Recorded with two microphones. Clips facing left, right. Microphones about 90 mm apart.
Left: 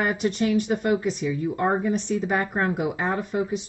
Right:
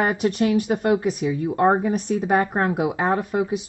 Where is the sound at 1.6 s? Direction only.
40° right (ahead or behind).